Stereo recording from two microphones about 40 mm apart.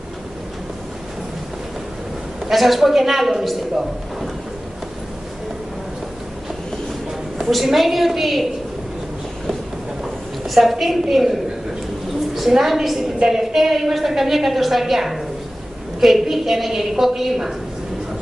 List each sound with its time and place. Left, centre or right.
2.5 s a woman's voice: centre
7.3 s a woman's voice: centre
10.0 s a woman's voice: centre